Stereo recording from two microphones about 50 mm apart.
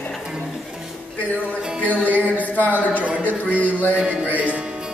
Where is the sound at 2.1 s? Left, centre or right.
Left.